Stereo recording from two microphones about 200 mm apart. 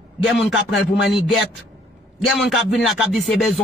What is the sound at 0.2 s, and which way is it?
Speech, centre (ahead or behind).